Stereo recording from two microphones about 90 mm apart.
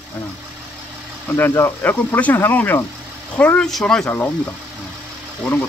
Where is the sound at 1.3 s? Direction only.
25° left (ahead or behind); by 4.0 s 5° left (ahead or behind).